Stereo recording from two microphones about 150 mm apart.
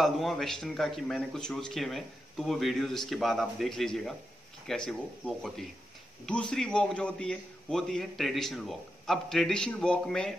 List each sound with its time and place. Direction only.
0.0 s speech: centre (ahead or behind)